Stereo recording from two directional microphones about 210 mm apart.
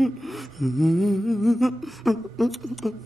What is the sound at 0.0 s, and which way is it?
Speech, centre (ahead or behind).